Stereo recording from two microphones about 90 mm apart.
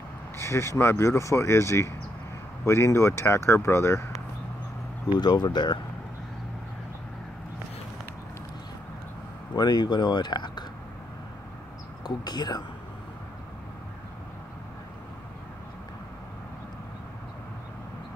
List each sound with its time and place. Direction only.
0.4 s speech: 30° left (ahead or behind)
5.0 s speech: 50° left (ahead or behind)
9.6 s speech: 55° left (ahead or behind)
12.0 s speech: 50° left (ahead or behind)